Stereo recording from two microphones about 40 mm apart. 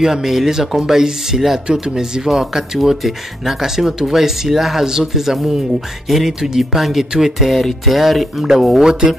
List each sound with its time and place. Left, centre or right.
0.0 s speech: centre